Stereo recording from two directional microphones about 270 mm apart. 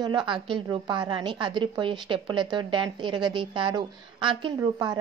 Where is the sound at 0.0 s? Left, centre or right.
Centre.